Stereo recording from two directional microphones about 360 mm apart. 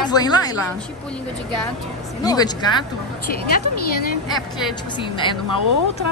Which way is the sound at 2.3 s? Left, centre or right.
Centre.